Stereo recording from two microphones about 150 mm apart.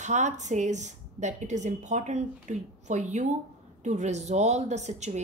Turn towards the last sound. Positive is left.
turn(degrees=-50)  # may be behind; listen again after turning